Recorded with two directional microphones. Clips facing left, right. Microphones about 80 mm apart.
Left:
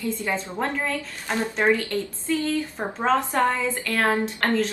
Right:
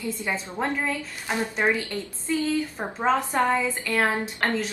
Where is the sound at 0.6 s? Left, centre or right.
Centre.